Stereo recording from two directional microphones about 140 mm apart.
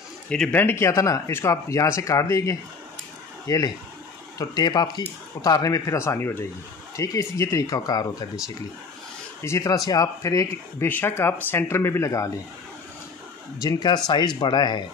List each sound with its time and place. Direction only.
0.3 s speech: 10° left (ahead or behind); by 8.3 s 25° left (ahead or behind)
9.4 s speech: 20° left (ahead or behind)
13.6 s speech: 30° left (ahead or behind)